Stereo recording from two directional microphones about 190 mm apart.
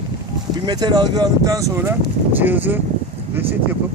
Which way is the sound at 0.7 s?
20° right (ahead or behind).